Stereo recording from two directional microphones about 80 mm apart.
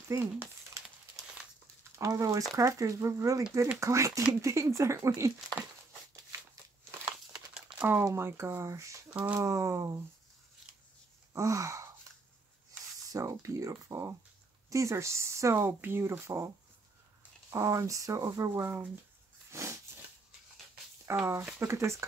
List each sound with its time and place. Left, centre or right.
0.1 s speech: right
2.0 s speech: right
7.8 s speech: right
9.1 s speech: right
9.4 s speech: right
11.3 s wail: right
13.0 s speech: right
19.5 s a sound: right
21.1 s speech: right